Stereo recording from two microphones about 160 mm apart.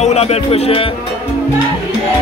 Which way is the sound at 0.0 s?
40° left (ahead or behind).